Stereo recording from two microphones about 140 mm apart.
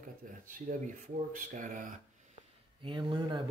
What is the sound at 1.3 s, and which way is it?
Speech, 70° right (ahead or behind).